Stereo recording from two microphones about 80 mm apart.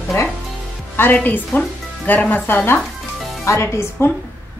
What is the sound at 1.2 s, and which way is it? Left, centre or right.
Speech, centre.